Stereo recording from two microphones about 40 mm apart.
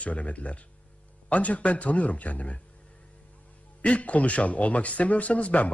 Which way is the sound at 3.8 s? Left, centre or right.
Left.